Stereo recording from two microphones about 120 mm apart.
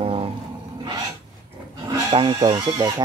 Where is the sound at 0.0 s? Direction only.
50° right (ahead or behind).